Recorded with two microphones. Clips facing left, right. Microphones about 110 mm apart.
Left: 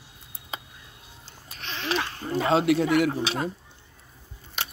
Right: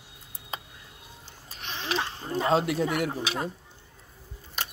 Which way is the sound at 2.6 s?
80° left.